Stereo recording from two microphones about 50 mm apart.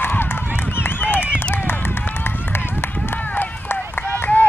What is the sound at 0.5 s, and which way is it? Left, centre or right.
Run, left.